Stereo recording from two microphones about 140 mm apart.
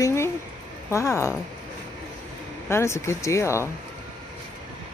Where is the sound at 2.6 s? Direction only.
20° left (ahead or behind).